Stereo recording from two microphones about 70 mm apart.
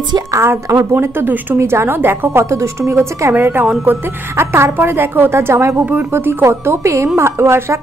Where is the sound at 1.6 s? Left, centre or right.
Right.